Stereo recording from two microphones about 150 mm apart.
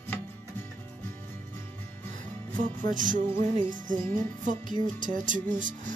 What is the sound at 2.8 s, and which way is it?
Music, 60° right (ahead or behind).